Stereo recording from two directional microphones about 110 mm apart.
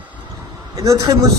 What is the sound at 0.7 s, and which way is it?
Speech, 30° right (ahead or behind).